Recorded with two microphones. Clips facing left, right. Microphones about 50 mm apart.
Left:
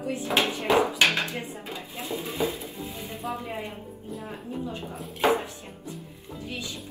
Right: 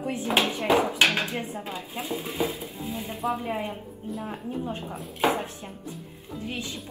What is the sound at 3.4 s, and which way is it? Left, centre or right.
A woman's voice, right.